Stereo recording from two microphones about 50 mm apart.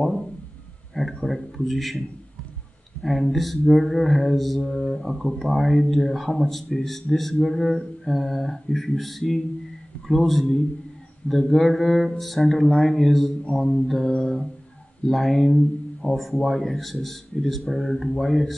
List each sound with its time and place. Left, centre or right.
0.9 s speech: centre
13.5 s mantra: left
13.8 s mantra: centre
15.0 s speech: centre